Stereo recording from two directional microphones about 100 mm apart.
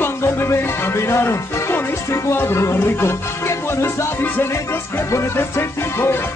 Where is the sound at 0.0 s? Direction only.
25° left (ahead or behind).